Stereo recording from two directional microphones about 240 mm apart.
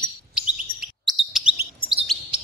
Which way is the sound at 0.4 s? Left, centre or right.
Centre.